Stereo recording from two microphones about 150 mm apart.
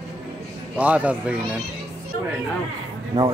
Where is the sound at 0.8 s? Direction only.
10° right (ahead or behind).